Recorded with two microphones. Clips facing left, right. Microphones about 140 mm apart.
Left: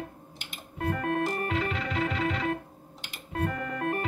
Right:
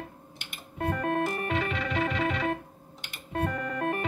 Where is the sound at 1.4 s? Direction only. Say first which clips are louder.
Right 1 dB; 65° right (ahead or behind).